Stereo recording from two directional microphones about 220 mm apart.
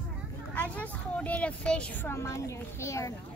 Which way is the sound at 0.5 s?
5° left (ahead or behind).